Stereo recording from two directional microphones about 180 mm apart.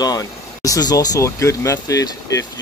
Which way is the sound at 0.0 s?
20° left (ahead or behind).